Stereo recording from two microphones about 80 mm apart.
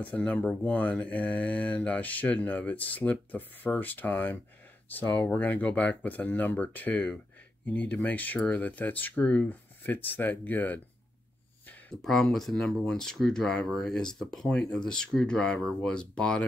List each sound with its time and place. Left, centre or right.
0.0 s speech: centre
11.9 s speech: centre